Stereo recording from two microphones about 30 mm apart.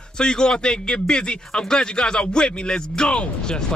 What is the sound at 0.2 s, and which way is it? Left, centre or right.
Speech, left.